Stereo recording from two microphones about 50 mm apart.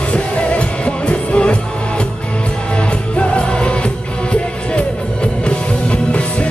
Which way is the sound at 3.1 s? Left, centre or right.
Left.